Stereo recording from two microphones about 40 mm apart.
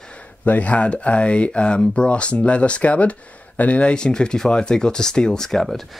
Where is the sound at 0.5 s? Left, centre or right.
Left.